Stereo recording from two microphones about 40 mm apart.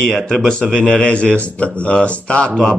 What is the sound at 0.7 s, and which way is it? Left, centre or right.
Speech, left.